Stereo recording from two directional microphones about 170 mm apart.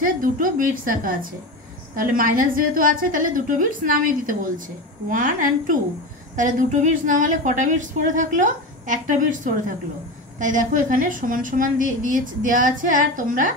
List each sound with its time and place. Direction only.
0.0 s a woman's voice: 55° right (ahead or behind)